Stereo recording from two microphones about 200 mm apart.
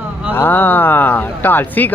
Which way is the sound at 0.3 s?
10° left (ahead or behind).